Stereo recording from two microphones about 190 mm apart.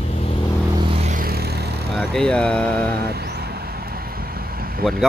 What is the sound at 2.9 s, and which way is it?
Vehicle, 55° right (ahead or behind).